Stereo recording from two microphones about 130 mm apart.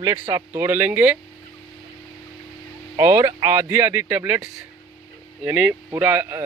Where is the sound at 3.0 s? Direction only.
20° right (ahead or behind).